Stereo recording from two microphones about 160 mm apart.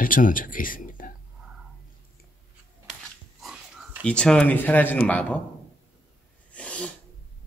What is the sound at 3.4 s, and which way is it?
Dog, 5° right (ahead or behind).